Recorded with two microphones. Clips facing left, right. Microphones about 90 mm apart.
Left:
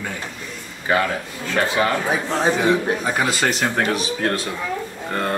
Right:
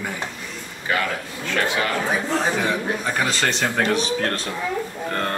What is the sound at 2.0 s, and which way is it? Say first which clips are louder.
A man's voice: left 2 dB; 15° left (ahead or behind).